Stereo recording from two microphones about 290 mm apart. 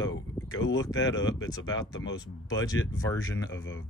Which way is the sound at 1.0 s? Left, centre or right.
Left.